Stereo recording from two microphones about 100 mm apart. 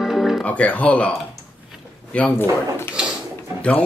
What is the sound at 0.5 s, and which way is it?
Speech, 15° left (ahead or behind).